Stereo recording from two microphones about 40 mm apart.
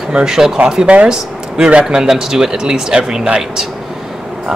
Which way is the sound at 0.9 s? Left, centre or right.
Right.